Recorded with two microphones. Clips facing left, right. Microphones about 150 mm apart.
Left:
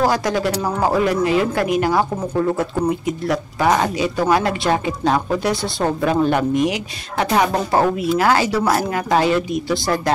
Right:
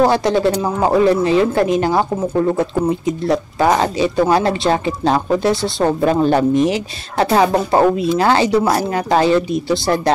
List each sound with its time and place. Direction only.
0.0 s speech: 25° right (ahead or behind)
5.5 s speech: centre (ahead or behind)
5.9 s speech: 35° right (ahead or behind)